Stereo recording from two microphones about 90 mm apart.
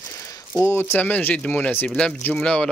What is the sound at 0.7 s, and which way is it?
Speech, 20° left (ahead or behind).